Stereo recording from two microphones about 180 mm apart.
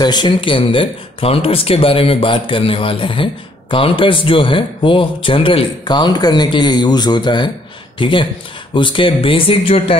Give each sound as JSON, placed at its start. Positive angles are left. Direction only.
{"t": 0.0, "sound": "speech", "side_deg": 25}